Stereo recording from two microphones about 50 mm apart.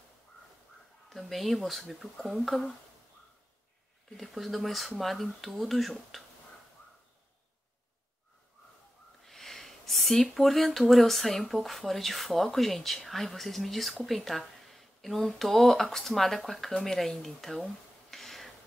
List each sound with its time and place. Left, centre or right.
1.1 s speech: centre
4.2 s speech: centre
9.2 s speech: centre
18.1 s a sound: centre